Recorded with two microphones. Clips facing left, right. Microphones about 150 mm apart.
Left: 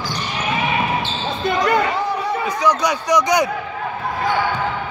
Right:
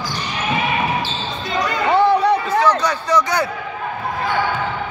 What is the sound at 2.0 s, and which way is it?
Chatter, 70° right (ahead or behind).